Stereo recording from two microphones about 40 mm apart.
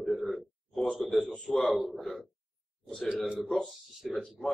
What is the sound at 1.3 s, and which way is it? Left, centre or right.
Speech, centre.